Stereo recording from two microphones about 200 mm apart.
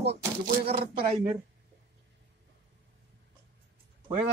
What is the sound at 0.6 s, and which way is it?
Speech, 50° right (ahead or behind).